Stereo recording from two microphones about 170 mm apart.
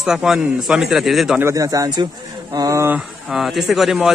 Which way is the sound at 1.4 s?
20° right (ahead or behind).